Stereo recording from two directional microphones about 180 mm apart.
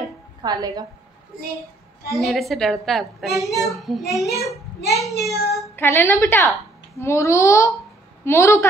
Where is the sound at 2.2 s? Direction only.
Centre (ahead or behind).